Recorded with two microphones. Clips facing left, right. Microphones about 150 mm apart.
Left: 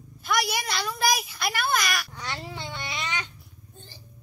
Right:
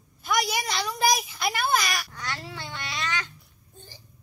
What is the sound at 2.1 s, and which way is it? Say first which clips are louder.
Babbling: even; 20° left (ahead or behind).